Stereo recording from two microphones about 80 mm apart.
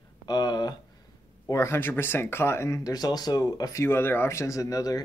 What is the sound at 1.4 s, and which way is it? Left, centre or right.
Speech, left.